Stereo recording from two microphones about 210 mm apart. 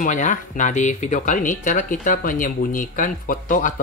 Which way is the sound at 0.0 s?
35° left (ahead or behind).